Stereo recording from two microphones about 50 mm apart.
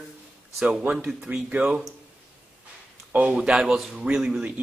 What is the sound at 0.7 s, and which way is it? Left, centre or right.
Speech, centre.